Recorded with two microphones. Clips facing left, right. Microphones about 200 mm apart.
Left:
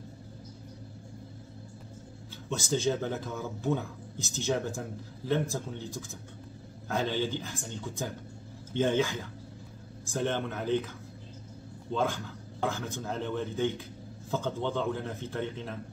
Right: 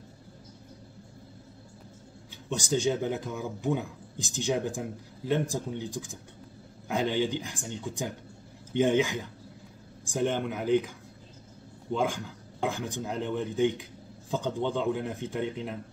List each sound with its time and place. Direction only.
2.5 s speech: 15° right (ahead or behind)
11.9 s speech: 15° right (ahead or behind)